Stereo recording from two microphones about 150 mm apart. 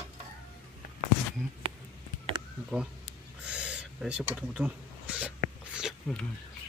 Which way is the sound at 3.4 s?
5° right (ahead or behind).